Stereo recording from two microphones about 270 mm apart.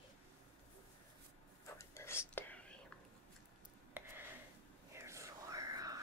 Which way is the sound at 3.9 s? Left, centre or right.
Centre.